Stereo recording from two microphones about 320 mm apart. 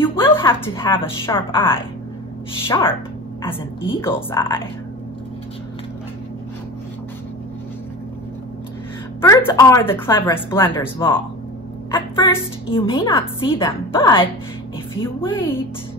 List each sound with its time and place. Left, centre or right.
0.0 s a woman's voice: centre
9.2 s a woman's voice: centre
12.6 s a woman's voice: centre